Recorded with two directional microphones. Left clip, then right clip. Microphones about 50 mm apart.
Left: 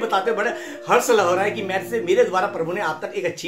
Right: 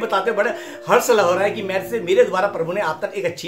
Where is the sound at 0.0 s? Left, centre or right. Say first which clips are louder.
Right 2 dB; right.